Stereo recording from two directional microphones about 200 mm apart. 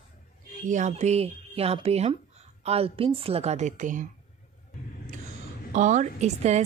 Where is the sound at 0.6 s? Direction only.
35° right (ahead or behind).